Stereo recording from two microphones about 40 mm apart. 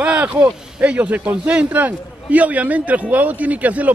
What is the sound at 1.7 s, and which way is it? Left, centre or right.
A man's voice, right.